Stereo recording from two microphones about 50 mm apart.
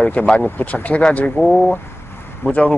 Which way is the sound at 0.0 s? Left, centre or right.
Left.